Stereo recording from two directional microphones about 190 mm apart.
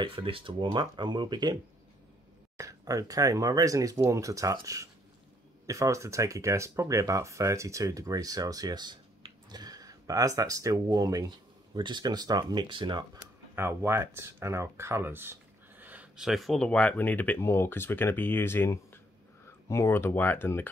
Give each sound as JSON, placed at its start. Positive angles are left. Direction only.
{"t": 0.0, "sound": "speech", "side_deg": -25}
{"t": 13.6, "sound": "speech", "side_deg": -15}